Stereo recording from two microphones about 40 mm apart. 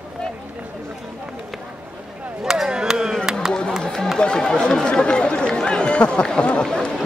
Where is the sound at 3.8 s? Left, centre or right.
Centre.